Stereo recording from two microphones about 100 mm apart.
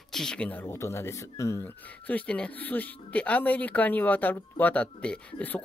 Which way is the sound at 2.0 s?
15° left (ahead or behind).